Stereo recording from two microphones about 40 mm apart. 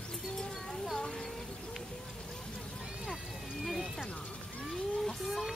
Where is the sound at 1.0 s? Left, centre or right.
Centre.